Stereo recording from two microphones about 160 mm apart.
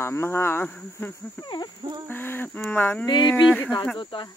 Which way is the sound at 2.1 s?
10° left (ahead or behind).